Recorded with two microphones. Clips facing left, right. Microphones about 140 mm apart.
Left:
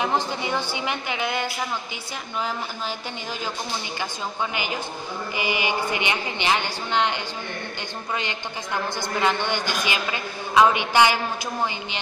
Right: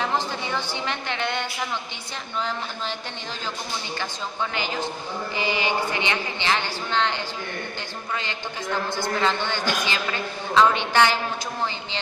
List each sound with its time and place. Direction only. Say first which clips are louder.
0.0 s a woman's voice: left 2 dB; 15° left (ahead or behind)
4.0 s a woman's voice: left 2 dB; 15° left (ahead or behind)